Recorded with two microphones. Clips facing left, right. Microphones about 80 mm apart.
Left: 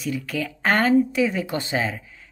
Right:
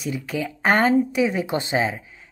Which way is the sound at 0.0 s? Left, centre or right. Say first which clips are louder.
Even; centre.